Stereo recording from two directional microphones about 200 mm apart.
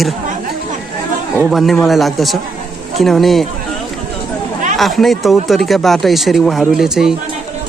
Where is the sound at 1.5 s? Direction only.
Centre (ahead or behind).